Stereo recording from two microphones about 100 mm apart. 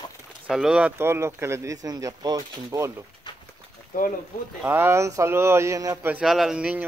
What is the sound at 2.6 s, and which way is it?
Speech, 30° right (ahead or behind).